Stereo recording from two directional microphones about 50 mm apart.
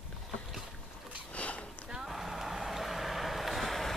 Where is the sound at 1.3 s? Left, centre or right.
Left.